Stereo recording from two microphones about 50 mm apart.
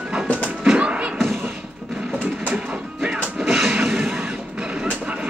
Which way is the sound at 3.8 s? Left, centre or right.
Centre.